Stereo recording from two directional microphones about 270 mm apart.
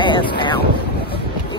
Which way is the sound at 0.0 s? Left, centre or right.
Centre.